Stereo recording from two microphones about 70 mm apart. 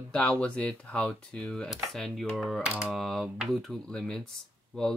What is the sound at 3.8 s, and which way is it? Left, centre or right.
Speech, centre.